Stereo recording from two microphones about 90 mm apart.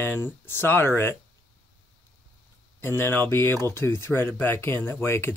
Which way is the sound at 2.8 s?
25° left (ahead or behind).